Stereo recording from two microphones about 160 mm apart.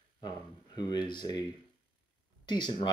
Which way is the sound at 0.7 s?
25° left (ahead or behind).